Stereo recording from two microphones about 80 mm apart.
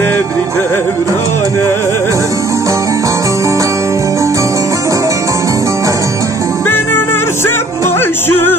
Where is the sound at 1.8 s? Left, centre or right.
Right.